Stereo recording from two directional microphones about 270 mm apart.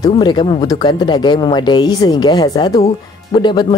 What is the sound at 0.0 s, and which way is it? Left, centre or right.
Speech, centre.